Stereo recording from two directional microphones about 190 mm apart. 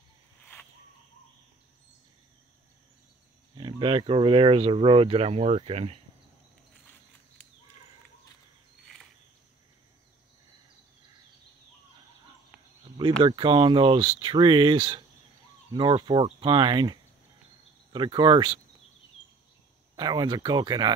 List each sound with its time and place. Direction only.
3.5 s speech: 25° right (ahead or behind)
13.2 s speech: 25° right (ahead or behind)
20.0 s speech: 20° right (ahead or behind)